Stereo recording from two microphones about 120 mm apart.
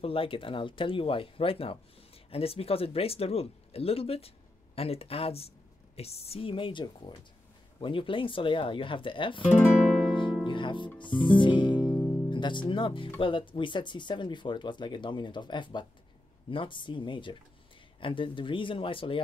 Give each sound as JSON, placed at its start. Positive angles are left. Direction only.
{"t": 0.0, "sound": "speech", "side_deg": 50}
{"t": 10.4, "sound": "music", "side_deg": 40}
{"t": 11.0, "sound": "speech", "side_deg": 40}
{"t": 11.3, "sound": "music", "side_deg": 40}
{"t": 12.3, "sound": "speech", "side_deg": 40}